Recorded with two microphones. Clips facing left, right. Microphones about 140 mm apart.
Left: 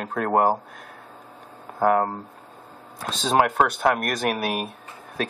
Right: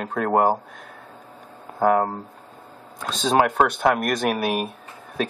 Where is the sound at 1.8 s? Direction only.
Centre (ahead or behind).